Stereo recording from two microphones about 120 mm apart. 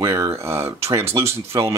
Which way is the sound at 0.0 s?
25° right (ahead or behind).